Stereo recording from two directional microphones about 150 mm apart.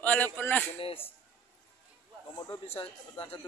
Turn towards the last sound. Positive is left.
turn(degrees=40)  # may be behind; listen again after turning